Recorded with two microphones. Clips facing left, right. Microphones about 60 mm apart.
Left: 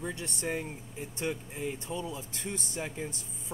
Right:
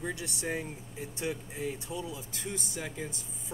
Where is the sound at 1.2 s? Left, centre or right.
Left.